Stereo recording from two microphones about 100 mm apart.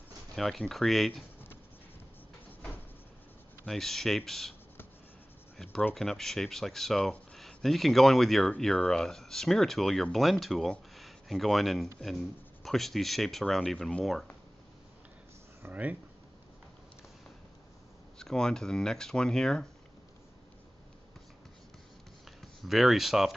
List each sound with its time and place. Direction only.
0.4 s speech: 5° left (ahead or behind)
3.6 s speech: 5° left (ahead or behind)
5.6 s speech: 5° left (ahead or behind)
15.6 s speech: 15° right (ahead or behind)
18.2 s speech: 5° left (ahead or behind)
22.4 s speech: centre (ahead or behind)